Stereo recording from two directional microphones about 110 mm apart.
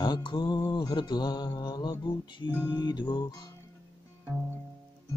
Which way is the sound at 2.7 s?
40° left (ahead or behind).